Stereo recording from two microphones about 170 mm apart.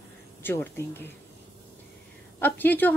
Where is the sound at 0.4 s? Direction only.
15° left (ahead or behind).